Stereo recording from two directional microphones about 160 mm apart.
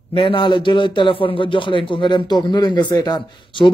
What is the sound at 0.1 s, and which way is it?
A man's voice, 30° left (ahead or behind).